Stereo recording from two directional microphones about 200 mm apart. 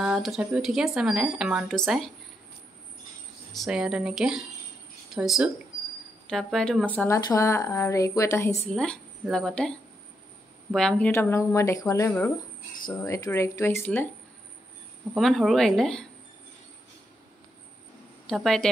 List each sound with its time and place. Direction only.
0.0 s speech: centre (ahead or behind)
3.5 s speech: centre (ahead or behind); by 8.5 s 15° left (ahead or behind)
8.7 s speech: 5° left (ahead or behind)
15.1 s speech: centre (ahead or behind)
18.3 s speech: centre (ahead or behind)